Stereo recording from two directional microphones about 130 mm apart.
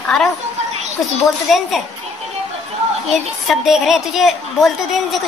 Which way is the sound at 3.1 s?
Centre (ahead or behind).